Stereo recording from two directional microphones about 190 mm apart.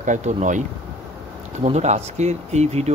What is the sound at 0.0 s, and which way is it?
Speech, 40° right (ahead or behind).